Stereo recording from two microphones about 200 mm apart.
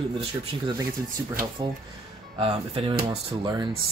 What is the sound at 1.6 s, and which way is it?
Speech, 25° right (ahead or behind).